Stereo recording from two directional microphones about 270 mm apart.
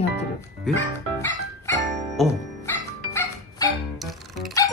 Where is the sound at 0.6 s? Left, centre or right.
Centre.